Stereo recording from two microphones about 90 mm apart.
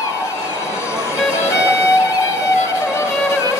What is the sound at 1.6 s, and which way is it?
Music, 30° left (ahead or behind).